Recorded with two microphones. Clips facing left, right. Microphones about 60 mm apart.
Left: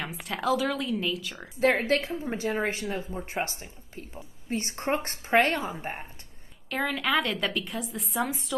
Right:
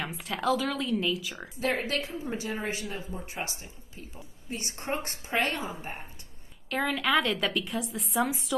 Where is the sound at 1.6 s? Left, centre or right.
Left.